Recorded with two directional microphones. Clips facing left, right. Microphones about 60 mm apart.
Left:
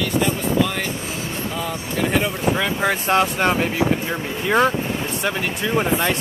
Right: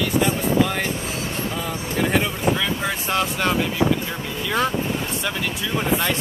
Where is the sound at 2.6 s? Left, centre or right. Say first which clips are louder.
Left 4 dB; left.